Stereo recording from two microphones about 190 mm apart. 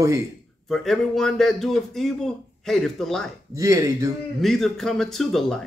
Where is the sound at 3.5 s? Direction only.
15° right (ahead or behind).